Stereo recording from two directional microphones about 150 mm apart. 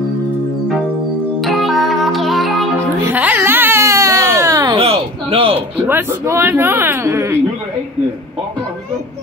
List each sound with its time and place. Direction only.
1.4 s music: centre (ahead or behind)
3.0 s baby cry: 15° right (ahead or behind)
4.7 s a sound: 40° right (ahead or behind)
5.9 s speech: 15° right (ahead or behind)